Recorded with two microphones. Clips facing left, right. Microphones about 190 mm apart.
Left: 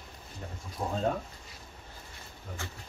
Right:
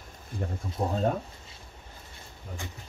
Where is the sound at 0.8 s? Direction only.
25° right (ahead or behind).